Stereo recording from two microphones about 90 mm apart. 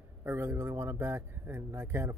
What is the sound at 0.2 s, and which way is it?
Speech, 30° right (ahead or behind).